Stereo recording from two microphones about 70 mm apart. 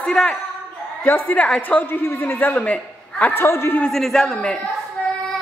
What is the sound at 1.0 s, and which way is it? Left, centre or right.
Speech, left.